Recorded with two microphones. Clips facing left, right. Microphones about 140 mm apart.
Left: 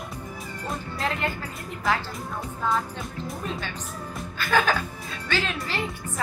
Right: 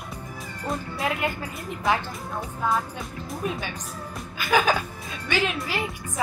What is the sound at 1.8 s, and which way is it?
Speech, 20° right (ahead or behind).